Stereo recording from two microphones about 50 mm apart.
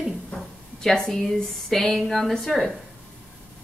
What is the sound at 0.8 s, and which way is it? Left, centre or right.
A woman's voice, centre.